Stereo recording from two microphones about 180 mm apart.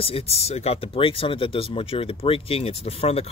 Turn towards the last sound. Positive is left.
turn(degrees=35)  # may be behind; listen again after turning